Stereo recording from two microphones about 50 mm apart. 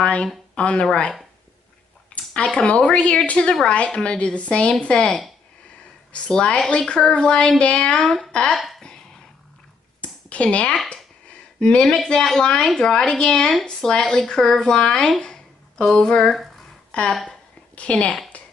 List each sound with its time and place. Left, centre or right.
0.0 s a woman's voice: left
2.3 s a woman's voice: centre
8.0 s speech: centre
8.3 s speech: centre
8.5 s a sound: centre
10.0 s a sound: left
12.4 s speech: centre
16.2 s speech: centre
17.7 s a woman's voice: left
18.3 s a sound: left